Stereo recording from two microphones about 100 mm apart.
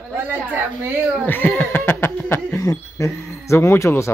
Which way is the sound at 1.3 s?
20° left (ahead or behind).